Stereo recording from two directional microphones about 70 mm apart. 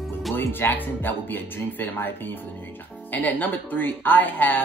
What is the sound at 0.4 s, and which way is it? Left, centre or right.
Speech, left.